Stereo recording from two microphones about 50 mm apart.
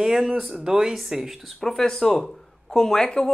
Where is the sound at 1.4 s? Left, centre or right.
Centre.